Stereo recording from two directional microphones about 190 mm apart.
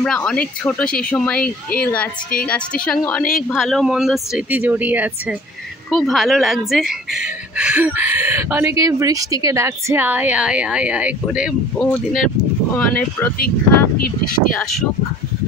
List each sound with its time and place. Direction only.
0.0 s speech: 5° left (ahead or behind)
5.9 s speech: centre (ahead or behind)
14.2 s speech: 50° left (ahead or behind)